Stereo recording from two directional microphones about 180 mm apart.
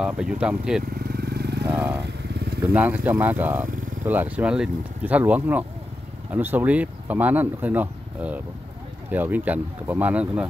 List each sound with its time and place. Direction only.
0.0 s speech: 5° right (ahead or behind)
0.9 s vehicle: 60° right (ahead or behind)
1.7 s speech: 10° right (ahead or behind)
2.0 s motorcycle: 65° right (ahead or behind)
2.7 s speech: 10° right (ahead or behind)